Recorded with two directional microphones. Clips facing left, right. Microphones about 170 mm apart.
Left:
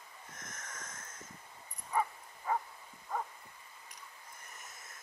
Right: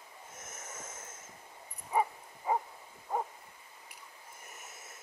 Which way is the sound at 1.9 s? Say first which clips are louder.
Right 3 dB; 20° right (ahead or behind).